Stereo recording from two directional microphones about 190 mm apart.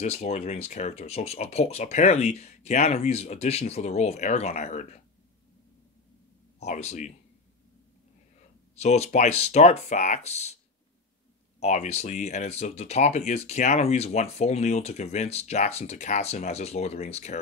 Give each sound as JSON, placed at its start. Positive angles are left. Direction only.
{"t": 0.0, "sound": "speech", "side_deg": 35}
{"t": 6.6, "sound": "speech", "side_deg": 35}
{"t": 8.7, "sound": "speech", "side_deg": 35}
{"t": 11.6, "sound": "speech", "side_deg": 35}